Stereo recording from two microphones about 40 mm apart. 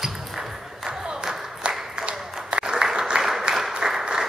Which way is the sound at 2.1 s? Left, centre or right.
Centre.